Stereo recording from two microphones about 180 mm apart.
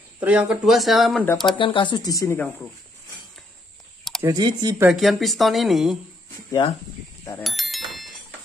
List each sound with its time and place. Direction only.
0.2 s a woman's voice: 5° right (ahead or behind)
1.2 s speech: 10° left (ahead or behind)
1.6 s speech: 25° left (ahead or behind); by 2.5 s 10° left (ahead or behind)
4.2 s speech: 20° right (ahead or behind)
4.7 s a woman's voice: 5° right (ahead or behind)
7.4 s bicycle bell: centre (ahead or behind)